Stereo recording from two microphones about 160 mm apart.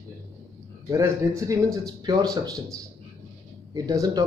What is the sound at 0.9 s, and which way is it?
Speech, 20° right (ahead or behind).